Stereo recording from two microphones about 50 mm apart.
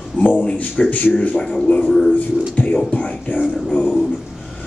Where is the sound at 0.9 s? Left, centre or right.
Left.